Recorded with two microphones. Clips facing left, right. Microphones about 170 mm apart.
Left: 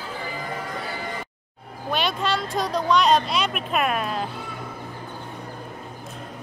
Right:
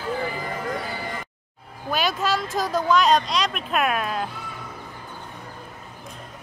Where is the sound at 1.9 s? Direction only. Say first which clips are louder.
Right 1 dB; centre (ahead or behind).